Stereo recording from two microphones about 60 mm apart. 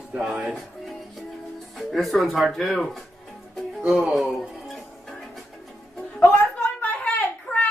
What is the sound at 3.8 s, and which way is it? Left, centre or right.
Speech, centre.